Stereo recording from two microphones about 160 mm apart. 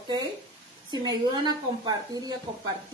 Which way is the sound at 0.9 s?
25° right (ahead or behind).